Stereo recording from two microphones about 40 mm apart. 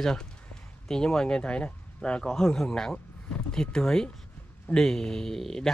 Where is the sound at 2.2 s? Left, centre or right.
Centre.